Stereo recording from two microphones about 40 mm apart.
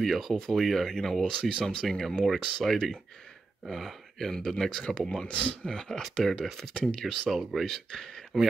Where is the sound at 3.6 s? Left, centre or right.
Centre; by 5.6 s left.